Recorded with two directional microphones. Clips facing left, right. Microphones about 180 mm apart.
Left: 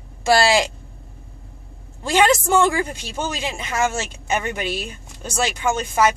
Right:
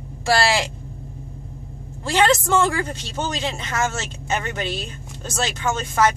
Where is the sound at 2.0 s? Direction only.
15° left (ahead or behind).